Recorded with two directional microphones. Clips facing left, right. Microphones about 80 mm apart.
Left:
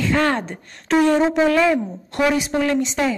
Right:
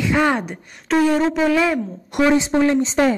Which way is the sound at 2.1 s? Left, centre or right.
Right.